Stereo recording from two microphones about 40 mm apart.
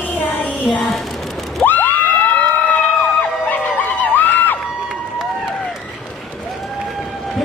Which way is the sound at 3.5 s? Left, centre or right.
Left.